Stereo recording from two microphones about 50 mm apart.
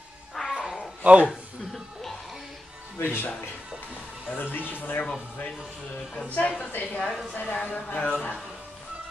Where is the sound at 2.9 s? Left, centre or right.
Left.